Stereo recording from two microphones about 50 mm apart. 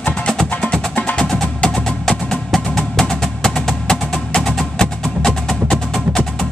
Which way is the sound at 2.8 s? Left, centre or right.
Centre.